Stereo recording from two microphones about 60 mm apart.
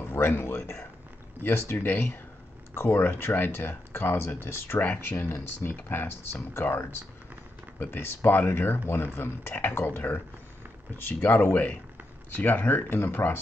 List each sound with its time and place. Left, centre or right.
0.0 s a sound: left
1.4 s speech: left
1.9 s speech: left
2.7 s speech: left
7.8 s speech: left